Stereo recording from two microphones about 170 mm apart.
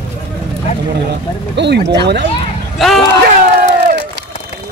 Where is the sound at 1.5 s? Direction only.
90° right.